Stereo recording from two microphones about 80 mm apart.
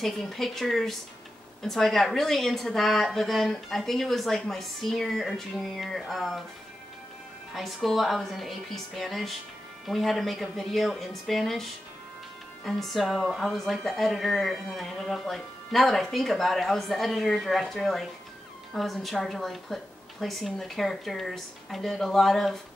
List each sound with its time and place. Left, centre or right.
0.0 s speech: centre
7.5 s speech: centre
12.6 s speech: centre